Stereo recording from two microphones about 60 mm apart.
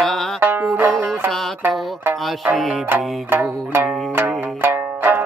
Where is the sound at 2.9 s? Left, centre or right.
Right.